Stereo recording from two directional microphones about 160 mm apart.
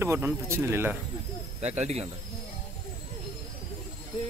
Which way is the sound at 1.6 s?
40° right (ahead or behind).